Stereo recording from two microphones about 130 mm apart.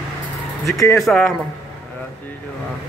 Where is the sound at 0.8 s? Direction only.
25° left (ahead or behind).